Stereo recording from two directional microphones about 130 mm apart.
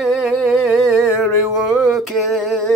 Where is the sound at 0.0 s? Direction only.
5° right (ahead or behind).